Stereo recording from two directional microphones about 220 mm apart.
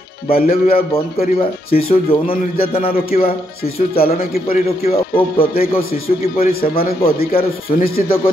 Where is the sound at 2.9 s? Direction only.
40° left (ahead or behind).